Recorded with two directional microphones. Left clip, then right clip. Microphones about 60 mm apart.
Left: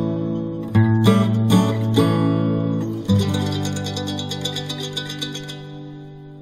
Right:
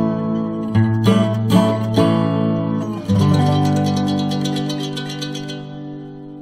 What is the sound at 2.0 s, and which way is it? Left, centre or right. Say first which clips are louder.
Music: right 2 dB; right.